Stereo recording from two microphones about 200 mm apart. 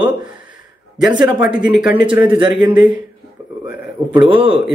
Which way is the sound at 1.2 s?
5° right (ahead or behind).